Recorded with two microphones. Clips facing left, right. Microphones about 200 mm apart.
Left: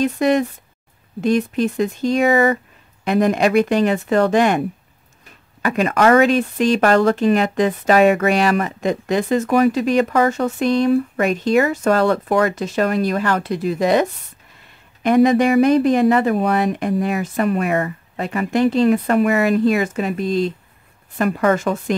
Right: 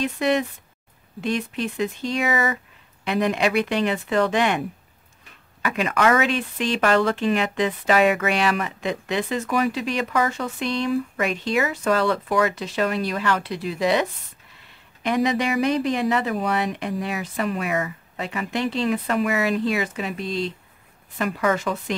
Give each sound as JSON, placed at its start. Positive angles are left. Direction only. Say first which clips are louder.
{"t": 0.0, "sound": "speech", "louder": "left 5 dB", "side_deg": 45}
{"t": 15.0, "sound": "speech", "louder": "left 8 dB", "side_deg": 50}